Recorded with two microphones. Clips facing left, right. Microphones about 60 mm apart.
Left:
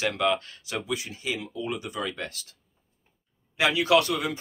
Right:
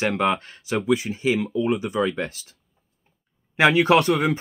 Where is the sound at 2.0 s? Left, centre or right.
Right.